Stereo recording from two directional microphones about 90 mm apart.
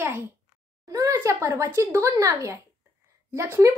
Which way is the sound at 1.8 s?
35° right (ahead or behind).